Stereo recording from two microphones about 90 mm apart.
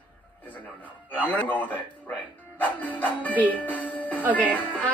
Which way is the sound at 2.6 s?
20° left (ahead or behind).